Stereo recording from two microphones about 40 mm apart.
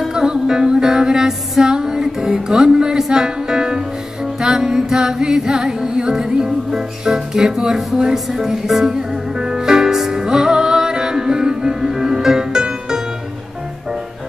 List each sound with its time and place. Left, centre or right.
0.1 s music: centre
7.1 s speech: centre
8.0 s music: centre